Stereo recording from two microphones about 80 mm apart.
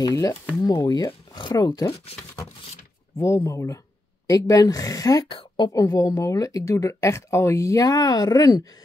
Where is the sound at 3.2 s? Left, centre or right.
Left.